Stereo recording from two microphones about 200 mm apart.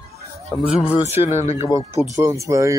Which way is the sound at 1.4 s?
35° left (ahead or behind).